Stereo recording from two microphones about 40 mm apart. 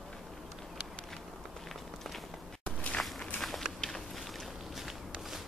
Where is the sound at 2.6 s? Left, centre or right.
Left.